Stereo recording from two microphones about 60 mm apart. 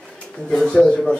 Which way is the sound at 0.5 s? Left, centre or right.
Centre.